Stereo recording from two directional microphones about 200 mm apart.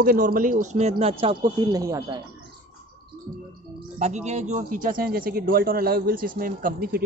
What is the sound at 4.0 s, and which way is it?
Speech, 35° right (ahead or behind).